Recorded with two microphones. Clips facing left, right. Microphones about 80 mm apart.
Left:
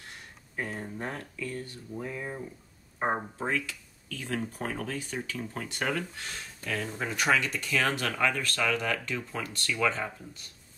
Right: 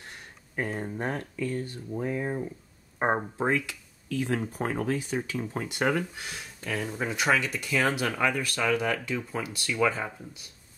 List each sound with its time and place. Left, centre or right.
0.6 s speech: right
3.3 s speech: right